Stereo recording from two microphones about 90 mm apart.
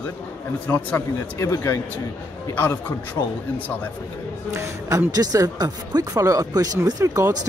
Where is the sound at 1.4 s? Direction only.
30° left (ahead or behind).